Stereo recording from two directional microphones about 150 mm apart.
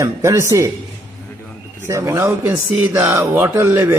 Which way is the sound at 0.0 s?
20° right (ahead or behind).